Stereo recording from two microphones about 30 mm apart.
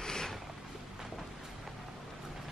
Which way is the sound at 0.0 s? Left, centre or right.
Left.